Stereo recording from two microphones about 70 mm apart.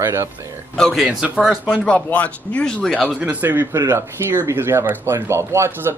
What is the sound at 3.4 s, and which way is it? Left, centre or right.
Speech, right.